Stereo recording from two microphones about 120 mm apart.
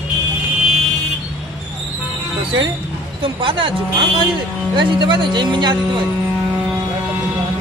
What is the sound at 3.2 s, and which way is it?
Speech, 45° right (ahead or behind).